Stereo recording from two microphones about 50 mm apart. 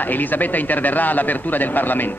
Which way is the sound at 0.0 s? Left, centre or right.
Left.